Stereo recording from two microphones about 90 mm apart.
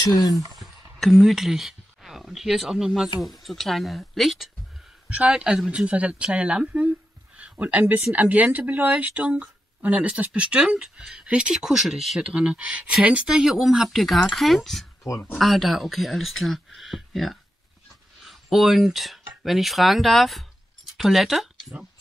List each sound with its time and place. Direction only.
0.1 s speech: 45° left (ahead or behind)
0.6 s speech: 5° left (ahead or behind)
5.1 s speech: 10° right (ahead or behind)